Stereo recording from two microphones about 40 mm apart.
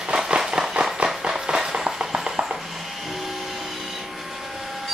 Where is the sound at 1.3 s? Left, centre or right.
Centre.